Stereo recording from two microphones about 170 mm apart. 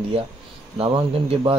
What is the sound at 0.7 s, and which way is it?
Speech, 35° right (ahead or behind).